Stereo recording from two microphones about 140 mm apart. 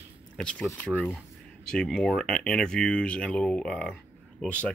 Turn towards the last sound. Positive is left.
turn(degrees=10)  # may be behind; listen again after turning